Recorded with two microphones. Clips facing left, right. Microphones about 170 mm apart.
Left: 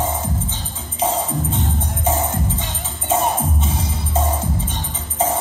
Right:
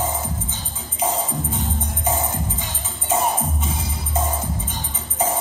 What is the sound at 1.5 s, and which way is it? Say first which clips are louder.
Music: left 3 dB; 25° left (ahead or behind).